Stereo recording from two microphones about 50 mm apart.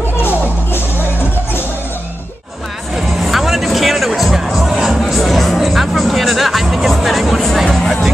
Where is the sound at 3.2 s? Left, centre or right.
Centre.